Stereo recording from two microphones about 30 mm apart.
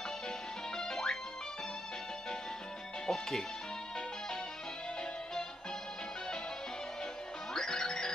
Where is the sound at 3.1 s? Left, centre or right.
Centre.